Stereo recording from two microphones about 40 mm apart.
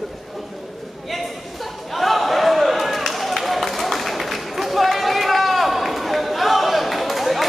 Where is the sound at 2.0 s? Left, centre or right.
Centre.